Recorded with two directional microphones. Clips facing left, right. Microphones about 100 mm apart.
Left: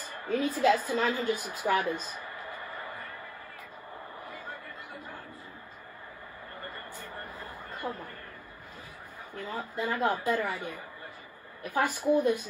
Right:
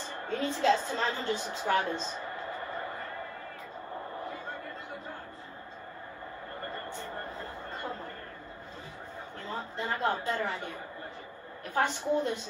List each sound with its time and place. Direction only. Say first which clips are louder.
0.0 s a woman's voice: left 3 dB; 25° right (ahead or behind)
6.9 s a sound: right 3 dB; 25° right (ahead or behind)
9.4 s a woman's voice: left 3 dB; 25° right (ahead or behind)
11.8 s a woman's voice: left 3 dB; 25° right (ahead or behind)